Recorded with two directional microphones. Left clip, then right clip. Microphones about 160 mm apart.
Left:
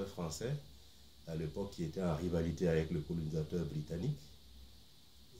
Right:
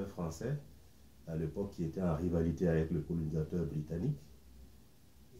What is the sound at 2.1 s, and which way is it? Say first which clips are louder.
Speech: right 2 dB; 20° left (ahead or behind).